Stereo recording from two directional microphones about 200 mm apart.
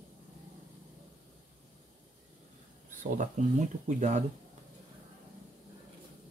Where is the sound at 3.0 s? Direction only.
40° right (ahead or behind).